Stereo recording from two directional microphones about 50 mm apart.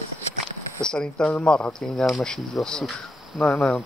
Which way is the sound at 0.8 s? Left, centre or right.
Centre.